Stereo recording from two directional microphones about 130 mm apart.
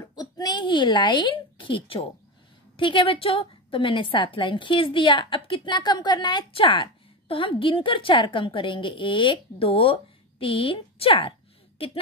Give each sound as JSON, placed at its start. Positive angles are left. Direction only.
{"t": 0.0, "sound": "a woman's voice", "side_deg": 30}